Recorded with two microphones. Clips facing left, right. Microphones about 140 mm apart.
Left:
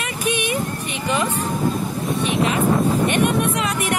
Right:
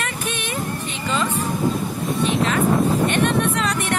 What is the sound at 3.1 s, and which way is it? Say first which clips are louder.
Speech: left 1 dB; 10° left (ahead or behind).